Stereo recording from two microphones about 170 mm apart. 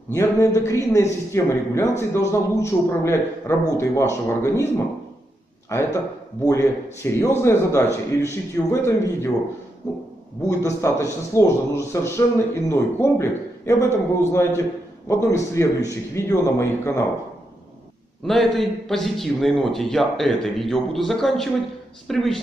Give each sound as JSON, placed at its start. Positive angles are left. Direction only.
{"t": 0.1, "sound": "a man's voice", "side_deg": 15}
{"t": 10.4, "sound": "a man's voice", "side_deg": 15}
{"t": 18.2, "sound": "a man's voice", "side_deg": 0}